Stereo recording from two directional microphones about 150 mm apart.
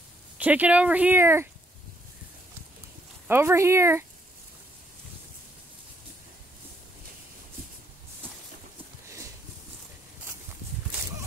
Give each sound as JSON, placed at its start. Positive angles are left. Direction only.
{"t": 0.4, "sound": "speech", "side_deg": -10}
{"t": 3.3, "sound": "speech", "side_deg": -15}